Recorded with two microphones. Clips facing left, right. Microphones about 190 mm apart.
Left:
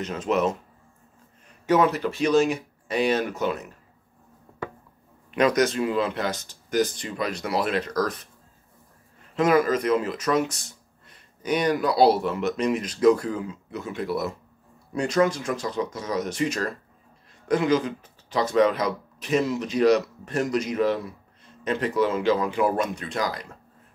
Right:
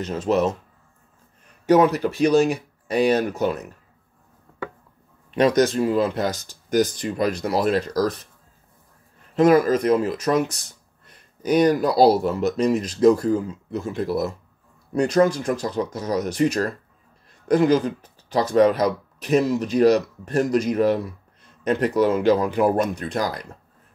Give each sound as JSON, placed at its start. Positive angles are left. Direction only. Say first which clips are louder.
{"t": 0.1, "sound": "speech", "louder": "right 3 dB", "side_deg": -35}
{"t": 1.7, "sound": "speech", "louder": "right 4 dB", "side_deg": -40}
{"t": 5.3, "sound": "speech", "louder": "right 3 dB", "side_deg": -35}
{"t": 9.3, "sound": "speech", "louder": "right 4 dB", "side_deg": -40}
{"t": 11.4, "sound": "speech", "louder": "right 5 dB", "side_deg": -40}
{"t": 22.5, "sound": "speech", "louder": "right 4 dB", "side_deg": -50}
{"t": 22.8, "sound": "speech", "louder": "right 4 dB", "side_deg": -35}